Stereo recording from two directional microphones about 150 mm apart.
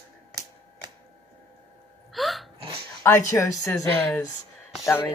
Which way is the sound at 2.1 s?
Centre (ahead or behind).